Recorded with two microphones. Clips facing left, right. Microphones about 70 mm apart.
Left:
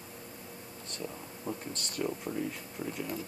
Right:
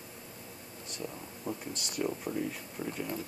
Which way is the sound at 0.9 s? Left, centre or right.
Centre.